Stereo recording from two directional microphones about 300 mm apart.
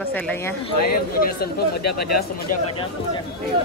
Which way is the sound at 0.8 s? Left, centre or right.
Left.